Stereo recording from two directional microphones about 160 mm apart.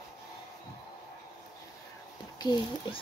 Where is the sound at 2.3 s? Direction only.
25° left (ahead or behind).